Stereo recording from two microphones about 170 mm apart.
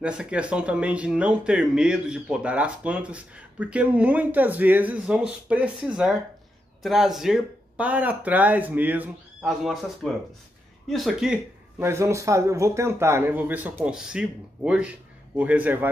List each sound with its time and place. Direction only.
0.0 s speech: 5° right (ahead or behind)
11.8 s speech: 15° right (ahead or behind)